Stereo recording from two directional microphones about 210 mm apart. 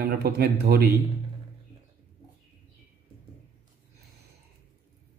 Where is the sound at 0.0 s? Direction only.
50° right (ahead or behind).